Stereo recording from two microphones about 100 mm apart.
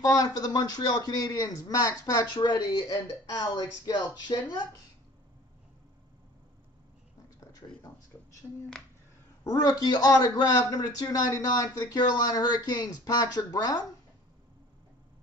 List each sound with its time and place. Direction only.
0.0 s a man's voice: 40° left (ahead or behind)
7.3 s a sound: 30° left (ahead or behind)
9.4 s a man's voice: 40° left (ahead or behind)